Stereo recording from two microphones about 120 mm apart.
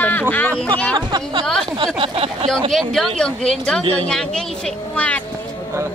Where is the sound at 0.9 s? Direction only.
35° right (ahead or behind).